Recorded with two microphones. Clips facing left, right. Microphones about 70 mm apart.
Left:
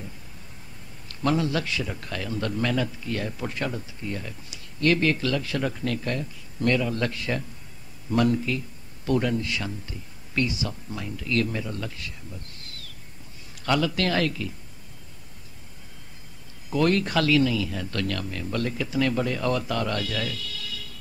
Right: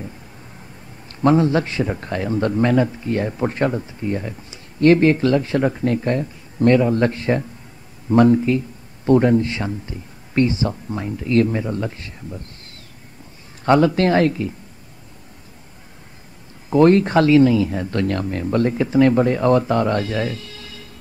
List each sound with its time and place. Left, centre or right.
1.2 s a man's voice: right
16.7 s speech: right